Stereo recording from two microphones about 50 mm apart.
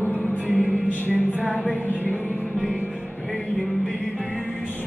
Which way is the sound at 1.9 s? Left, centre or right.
Left.